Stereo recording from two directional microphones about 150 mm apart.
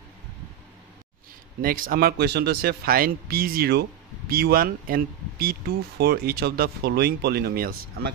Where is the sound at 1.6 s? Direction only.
75° right (ahead or behind).